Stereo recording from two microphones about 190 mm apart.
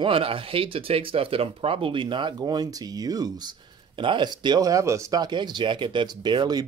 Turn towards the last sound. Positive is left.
turn(degrees=-20)  # may be behind; listen again after turning